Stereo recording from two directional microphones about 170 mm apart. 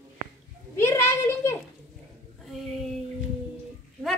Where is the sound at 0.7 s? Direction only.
15° left (ahead or behind).